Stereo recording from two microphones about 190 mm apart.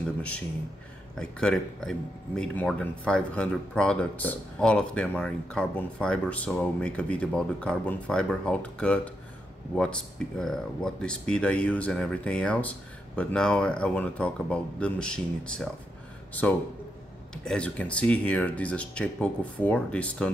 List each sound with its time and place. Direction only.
0.0 s a sound: 5° left (ahead or behind)
1.1 s speech: 5° left (ahead or behind)
17.5 s speech: 5° left (ahead or behind)